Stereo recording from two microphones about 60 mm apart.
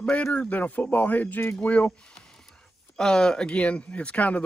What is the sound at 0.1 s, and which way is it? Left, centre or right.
Speech, left.